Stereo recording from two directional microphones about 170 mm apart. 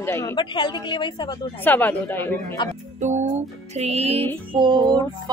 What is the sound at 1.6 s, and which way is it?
Speech, 10° left (ahead or behind).